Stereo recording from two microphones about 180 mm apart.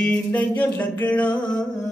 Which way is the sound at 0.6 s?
10° left (ahead or behind).